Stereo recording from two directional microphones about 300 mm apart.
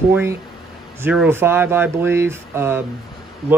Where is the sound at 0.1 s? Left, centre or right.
Centre.